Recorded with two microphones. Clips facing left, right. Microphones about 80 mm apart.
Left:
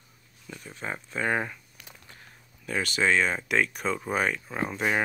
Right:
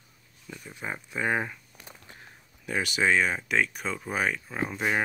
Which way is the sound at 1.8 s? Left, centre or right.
Right.